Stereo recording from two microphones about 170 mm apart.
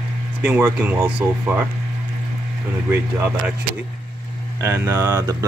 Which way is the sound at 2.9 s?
15° right (ahead or behind).